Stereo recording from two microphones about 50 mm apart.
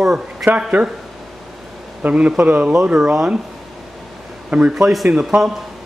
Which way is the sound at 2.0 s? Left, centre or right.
Right.